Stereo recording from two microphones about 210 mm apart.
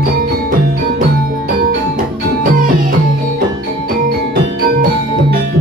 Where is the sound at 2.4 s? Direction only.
40° right (ahead or behind).